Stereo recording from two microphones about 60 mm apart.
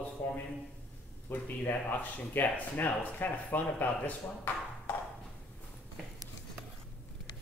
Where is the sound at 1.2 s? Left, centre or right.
Left.